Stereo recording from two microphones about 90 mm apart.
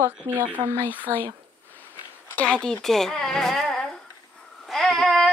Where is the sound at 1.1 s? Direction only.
35° right (ahead or behind).